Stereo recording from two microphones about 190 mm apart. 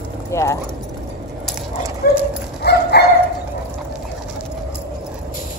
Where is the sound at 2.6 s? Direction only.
60° left (ahead or behind).